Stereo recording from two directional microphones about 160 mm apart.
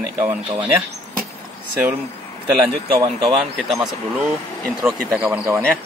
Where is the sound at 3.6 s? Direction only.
Centre (ahead or behind).